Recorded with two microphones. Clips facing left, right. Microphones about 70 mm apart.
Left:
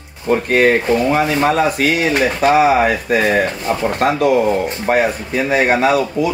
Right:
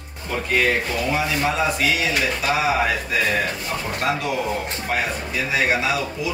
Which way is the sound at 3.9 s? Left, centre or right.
Left.